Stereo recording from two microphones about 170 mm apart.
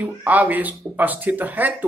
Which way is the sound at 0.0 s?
10° right (ahead or behind).